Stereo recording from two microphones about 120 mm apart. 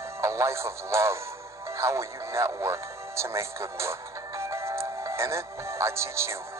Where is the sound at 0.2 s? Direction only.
25° right (ahead or behind).